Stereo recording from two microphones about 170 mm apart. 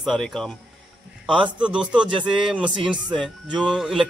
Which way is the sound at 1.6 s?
5° right (ahead or behind).